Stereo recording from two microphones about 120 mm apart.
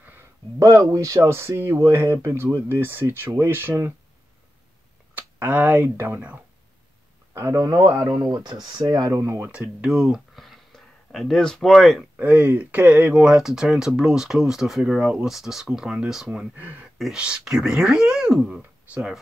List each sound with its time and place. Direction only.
0.0 s a sound: 15° right (ahead or behind)
0.6 s speech: 30° right (ahead or behind)
5.1 s speech: 15° right (ahead or behind)
7.3 s speech: 25° right (ahead or behind)
9.8 s speech: 5° right (ahead or behind)
12.2 s speech: 15° right (ahead or behind)
18.6 s speech: 15° right (ahead or behind)